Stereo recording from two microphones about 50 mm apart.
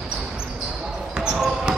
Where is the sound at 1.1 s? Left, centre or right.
Centre.